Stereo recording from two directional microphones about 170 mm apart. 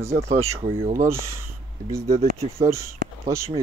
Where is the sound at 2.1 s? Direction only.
40° right (ahead or behind).